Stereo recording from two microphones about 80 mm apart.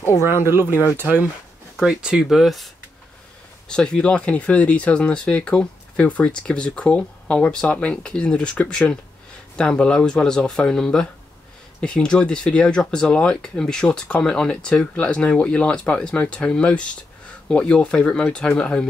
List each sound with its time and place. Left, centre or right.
0.2 s speech: right
1.8 s speech: centre
3.6 s speech: centre